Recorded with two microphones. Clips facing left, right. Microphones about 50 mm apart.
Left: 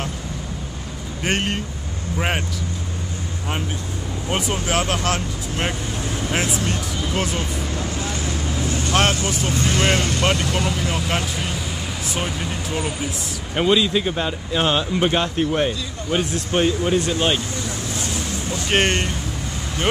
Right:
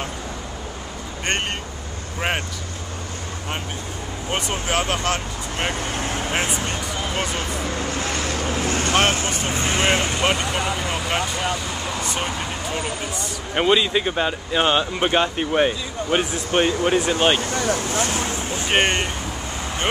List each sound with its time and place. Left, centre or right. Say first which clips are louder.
1.2 s speech: left 2 dB; centre
4.3 s speech: left 1 dB; centre
5.9 s vehicle: right 1 dB; right
6.5 s speech: left 2 dB; centre
8.0 s vehicle: right 2 dB; right
9.5 s speech: even; right; by 13.3 s centre
13.6 s speech: even; centre
17.4 s speech: right 6 dB; right
17.7 s vehicle: right 4 dB; right
18.7 s speech: even; centre